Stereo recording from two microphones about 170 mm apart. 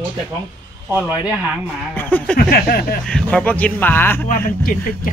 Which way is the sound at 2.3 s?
60° left (ahead or behind).